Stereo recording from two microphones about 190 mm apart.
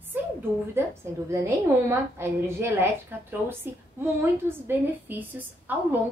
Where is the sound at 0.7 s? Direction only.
15° right (ahead or behind).